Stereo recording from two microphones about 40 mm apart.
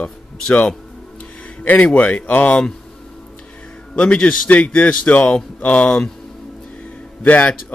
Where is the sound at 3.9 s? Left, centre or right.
Left.